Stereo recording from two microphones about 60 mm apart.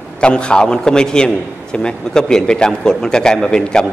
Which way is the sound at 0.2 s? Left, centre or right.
Centre.